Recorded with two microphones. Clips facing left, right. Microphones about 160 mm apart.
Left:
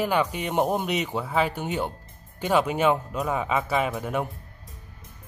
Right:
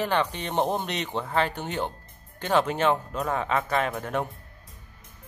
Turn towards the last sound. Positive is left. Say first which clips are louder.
# left 1 dB
turn(degrees=5)  # may be behind; listen again after turning